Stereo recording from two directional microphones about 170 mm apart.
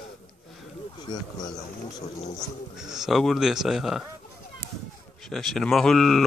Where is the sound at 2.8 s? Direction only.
5° right (ahead or behind).